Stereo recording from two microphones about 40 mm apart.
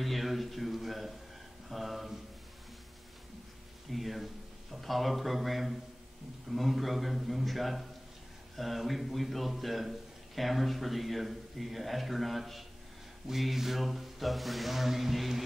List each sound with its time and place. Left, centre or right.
0.0 s a man's voice: centre
3.9 s a man's voice: centre